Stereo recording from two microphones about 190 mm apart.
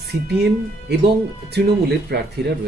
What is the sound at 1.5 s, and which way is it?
A man's voice, 55° right (ahead or behind).